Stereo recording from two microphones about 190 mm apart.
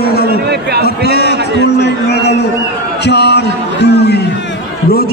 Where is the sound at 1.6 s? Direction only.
60° left (ahead or behind).